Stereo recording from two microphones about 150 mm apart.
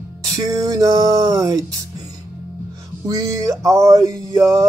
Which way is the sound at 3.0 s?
20° right (ahead or behind).